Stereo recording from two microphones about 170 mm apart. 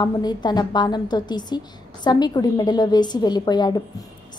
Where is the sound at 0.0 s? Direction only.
25° left (ahead or behind).